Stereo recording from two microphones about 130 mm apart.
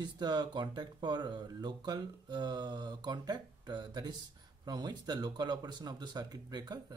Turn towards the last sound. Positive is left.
turn(degrees=-30)  # may be behind; listen again after turning